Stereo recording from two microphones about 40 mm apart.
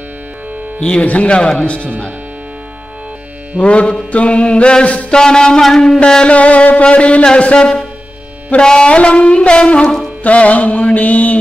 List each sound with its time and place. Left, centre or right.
0.7 s speech: left
1.0 s music: left
1.3 s mantra: left
3.5 s mantra: left
5.1 s mantra: centre
6.2 s music: left
7.5 s mantra: left
8.5 s music: centre
8.8 s mantra: left
10.2 s music: left